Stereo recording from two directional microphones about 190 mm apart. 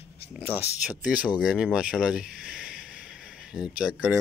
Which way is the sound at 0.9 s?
5° right (ahead or behind).